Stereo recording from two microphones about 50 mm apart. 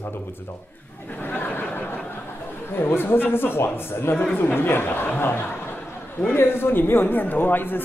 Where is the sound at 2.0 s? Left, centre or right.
Left.